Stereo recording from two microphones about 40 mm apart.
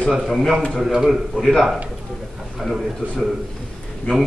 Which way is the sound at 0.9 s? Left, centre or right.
Centre.